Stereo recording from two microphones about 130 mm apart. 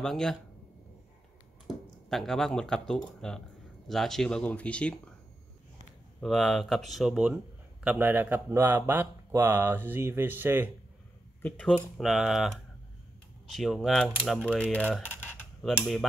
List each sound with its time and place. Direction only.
0.0 s speech: 5° left (ahead or behind)
2.0 s speech: 5° left (ahead or behind)
6.2 s speech: centre (ahead or behind); by 10.7 s 15° right (ahead or behind)
11.4 s speech: 10° left (ahead or behind)
12.0 s speech: centre (ahead or behind); by 15.4 s 15° left (ahead or behind)
15.6 s speech: 5° right (ahead or behind)